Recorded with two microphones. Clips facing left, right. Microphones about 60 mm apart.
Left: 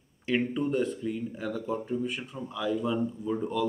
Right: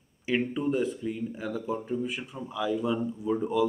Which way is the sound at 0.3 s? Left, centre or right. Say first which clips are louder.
Even; centre.